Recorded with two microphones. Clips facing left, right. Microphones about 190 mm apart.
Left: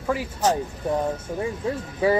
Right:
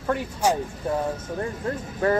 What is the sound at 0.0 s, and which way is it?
Speech, 5° left (ahead or behind).